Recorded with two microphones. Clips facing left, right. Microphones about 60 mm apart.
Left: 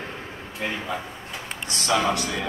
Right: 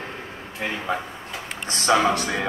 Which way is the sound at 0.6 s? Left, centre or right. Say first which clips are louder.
Right 1 dB; right.